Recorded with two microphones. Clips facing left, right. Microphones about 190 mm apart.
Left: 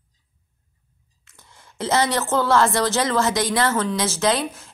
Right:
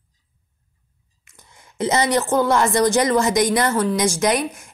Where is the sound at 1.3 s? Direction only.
20° right (ahead or behind).